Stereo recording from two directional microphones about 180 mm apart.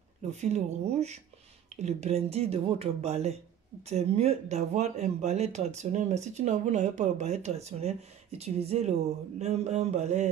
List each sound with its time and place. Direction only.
0.3 s speech: 40° right (ahead or behind)